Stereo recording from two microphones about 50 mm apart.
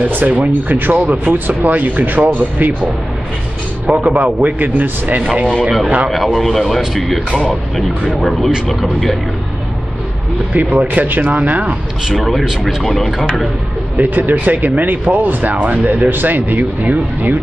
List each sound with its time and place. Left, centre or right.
0.1 s speech: right
1.0 s speech: right
3.8 s speech: right
6.0 s speech: centre
8.2 s speech: centre
10.5 s speech: right
12.3 s speech: centre
13.9 s speech: right